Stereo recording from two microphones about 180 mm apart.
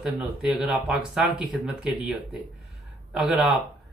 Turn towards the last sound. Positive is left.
turn(degrees=-5)  # may be behind; listen again after turning